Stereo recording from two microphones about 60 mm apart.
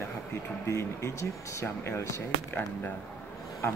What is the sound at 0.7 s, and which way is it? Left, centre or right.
Speech, left.